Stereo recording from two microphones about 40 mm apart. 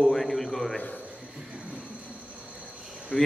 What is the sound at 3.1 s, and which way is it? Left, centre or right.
Speech, left.